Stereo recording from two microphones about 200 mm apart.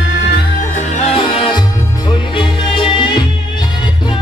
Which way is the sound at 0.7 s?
30° left (ahead or behind).